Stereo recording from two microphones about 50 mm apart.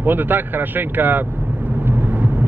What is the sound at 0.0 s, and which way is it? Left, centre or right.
Speech, right.